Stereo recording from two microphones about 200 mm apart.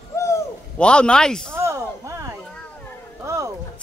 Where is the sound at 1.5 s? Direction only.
15° right (ahead or behind).